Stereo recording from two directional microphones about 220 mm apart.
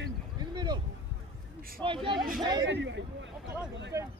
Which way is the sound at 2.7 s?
55° right (ahead or behind).